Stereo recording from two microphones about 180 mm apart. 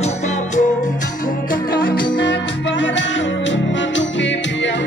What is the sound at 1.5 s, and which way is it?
Music, 55° left (ahead or behind).